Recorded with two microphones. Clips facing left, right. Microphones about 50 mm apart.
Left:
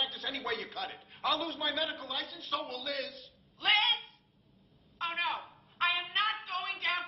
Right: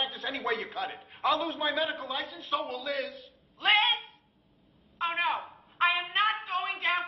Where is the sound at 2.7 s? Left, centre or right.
Centre.